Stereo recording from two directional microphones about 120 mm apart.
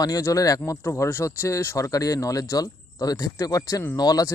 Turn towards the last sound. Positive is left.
turn(degrees=30)  # may be behind; listen again after turning